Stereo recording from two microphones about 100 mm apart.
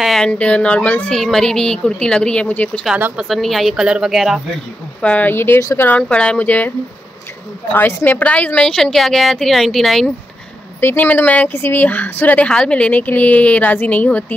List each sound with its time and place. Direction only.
0.0 s speech: 5° left (ahead or behind)
1.1 s speech: 5° left (ahead or behind)
3.2 s speech: centre (ahead or behind)
5.0 s speech: 15° left (ahead or behind)
5.9 s speech: 10° left (ahead or behind)
7.7 s speech: 20° left (ahead or behind); by 10.1 s centre (ahead or behind)
10.8 s speech: 20° left (ahead or behind)